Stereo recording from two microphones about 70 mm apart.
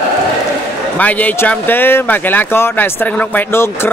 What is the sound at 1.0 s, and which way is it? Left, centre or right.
Speech, left.